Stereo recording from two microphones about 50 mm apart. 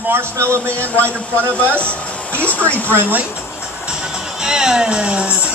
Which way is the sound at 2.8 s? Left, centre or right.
Right.